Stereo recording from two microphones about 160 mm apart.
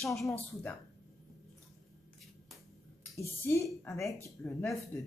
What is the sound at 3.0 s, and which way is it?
Speech, 15° left (ahead or behind).